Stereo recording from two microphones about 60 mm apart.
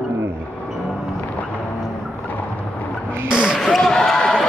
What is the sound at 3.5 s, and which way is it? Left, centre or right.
Basketball bounce, centre.